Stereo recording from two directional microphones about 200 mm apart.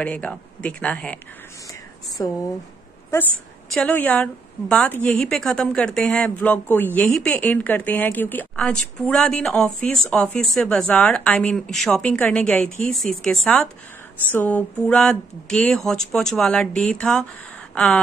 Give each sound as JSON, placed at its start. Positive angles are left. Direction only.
{"t": 0.0, "sound": "a woman's voice", "side_deg": 5}
{"t": 2.2, "sound": "speech", "side_deg": 20}
{"t": 3.7, "sound": "a woman's voice", "side_deg": 5}